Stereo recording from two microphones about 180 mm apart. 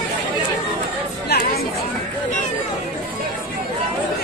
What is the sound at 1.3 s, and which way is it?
Chatter, 60° left (ahead or behind).